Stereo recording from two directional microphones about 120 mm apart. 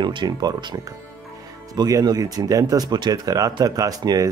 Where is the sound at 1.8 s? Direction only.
30° right (ahead or behind).